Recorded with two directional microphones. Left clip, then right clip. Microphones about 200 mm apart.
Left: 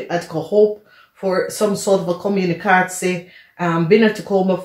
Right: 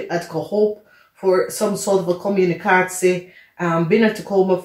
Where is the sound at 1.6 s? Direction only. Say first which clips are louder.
Left 2 dB; 40° left (ahead or behind).